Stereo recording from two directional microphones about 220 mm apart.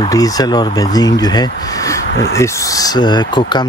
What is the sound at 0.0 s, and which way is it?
Speech, 15° left (ahead or behind).